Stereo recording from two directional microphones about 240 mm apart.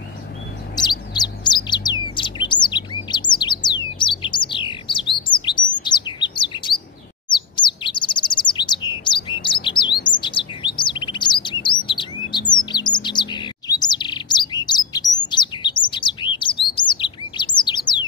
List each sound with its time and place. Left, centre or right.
0.7 s bird: centre
7.2 s chirp: centre
11.9 s bird: centre